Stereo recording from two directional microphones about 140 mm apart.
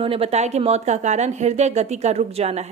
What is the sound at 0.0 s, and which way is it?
Speech, 40° right (ahead or behind).